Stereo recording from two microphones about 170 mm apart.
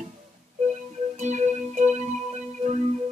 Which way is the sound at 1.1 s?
45° right (ahead or behind).